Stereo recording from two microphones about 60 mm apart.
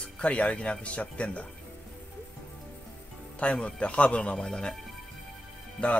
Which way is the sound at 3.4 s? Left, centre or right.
Centre.